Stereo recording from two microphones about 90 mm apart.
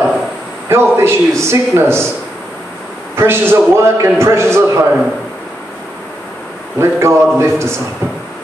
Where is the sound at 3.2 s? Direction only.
25° right (ahead or behind).